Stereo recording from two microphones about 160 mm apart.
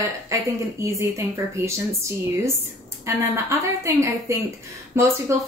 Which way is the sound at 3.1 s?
20° right (ahead or behind).